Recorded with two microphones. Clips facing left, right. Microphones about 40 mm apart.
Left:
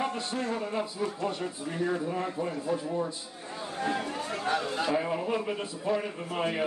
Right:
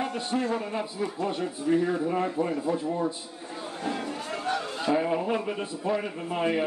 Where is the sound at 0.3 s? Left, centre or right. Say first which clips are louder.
Right 4 dB; right.